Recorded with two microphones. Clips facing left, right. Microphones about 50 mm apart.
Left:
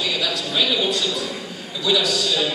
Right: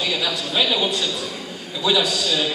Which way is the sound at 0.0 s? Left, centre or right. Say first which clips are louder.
Even; centre.